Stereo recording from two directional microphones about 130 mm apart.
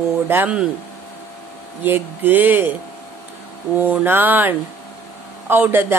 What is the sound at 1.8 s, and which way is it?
Speech, 15° right (ahead or behind).